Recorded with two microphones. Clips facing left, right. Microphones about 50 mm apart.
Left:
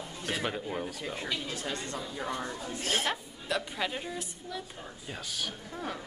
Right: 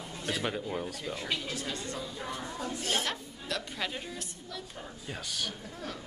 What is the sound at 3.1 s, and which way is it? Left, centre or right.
A woman's voice, centre.